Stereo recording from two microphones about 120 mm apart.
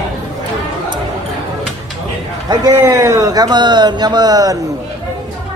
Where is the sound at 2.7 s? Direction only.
20° right (ahead or behind).